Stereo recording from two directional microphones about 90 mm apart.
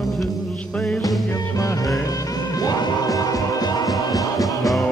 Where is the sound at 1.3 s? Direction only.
40° left (ahead or behind).